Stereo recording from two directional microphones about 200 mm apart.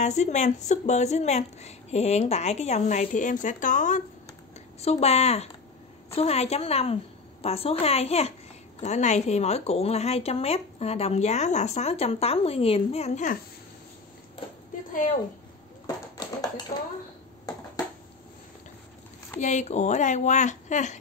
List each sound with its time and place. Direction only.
0.0 s a woman's voice: 35° left (ahead or behind)
16.2 s a sound: 20° left (ahead or behind)
19.4 s speech: 35° left (ahead or behind)